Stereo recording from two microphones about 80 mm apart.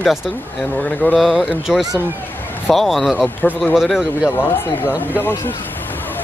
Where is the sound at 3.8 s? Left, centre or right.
Centre.